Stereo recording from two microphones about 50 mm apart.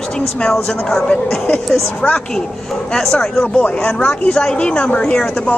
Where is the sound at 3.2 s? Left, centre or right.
Centre.